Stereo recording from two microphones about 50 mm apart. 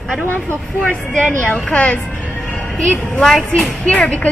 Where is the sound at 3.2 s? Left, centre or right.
Centre.